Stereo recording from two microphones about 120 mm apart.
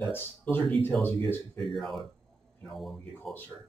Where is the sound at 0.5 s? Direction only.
15° left (ahead or behind).